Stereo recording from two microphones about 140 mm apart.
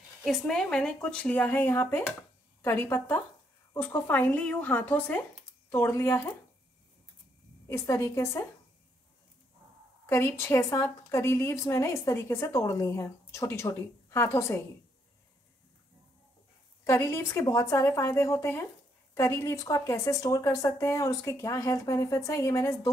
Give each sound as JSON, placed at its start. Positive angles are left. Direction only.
{"t": 0.2, "sound": "speech", "side_deg": 0}
{"t": 7.6, "sound": "a woman's voice", "side_deg": 20}
{"t": 10.0, "sound": "a woman's voice", "side_deg": 20}
{"t": 16.8, "sound": "a woman's voice", "side_deg": 20}